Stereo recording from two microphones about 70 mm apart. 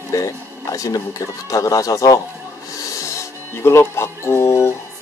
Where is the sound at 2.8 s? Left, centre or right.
Left.